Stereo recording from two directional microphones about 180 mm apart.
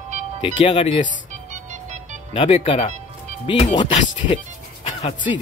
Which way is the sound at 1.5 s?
40° right (ahead or behind).